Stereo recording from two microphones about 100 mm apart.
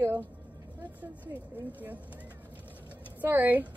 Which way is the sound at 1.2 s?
15° right (ahead or behind).